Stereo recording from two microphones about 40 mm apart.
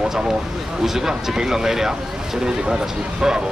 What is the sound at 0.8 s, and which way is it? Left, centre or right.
Speech, centre.